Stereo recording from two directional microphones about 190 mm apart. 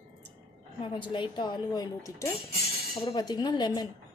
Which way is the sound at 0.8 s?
25° left (ahead or behind).